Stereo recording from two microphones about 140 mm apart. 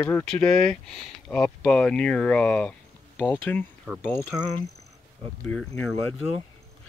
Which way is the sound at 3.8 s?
5° right (ahead or behind).